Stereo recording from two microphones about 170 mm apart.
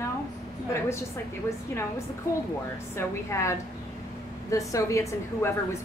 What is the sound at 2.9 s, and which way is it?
Speech, 15° left (ahead or behind).